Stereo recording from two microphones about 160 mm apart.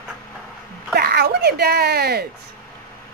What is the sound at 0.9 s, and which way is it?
Speech, 80° right.